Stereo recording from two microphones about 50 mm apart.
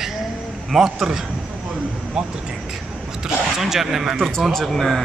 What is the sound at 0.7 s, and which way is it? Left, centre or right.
Speech, centre.